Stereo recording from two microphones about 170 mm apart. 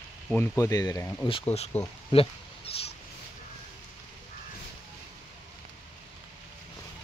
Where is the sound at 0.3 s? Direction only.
15° left (ahead or behind).